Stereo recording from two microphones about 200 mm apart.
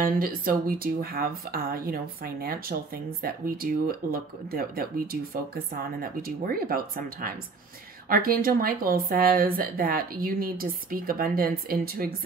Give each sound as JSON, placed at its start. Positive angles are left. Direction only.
{"t": 0.0, "sound": "speech", "side_deg": -45}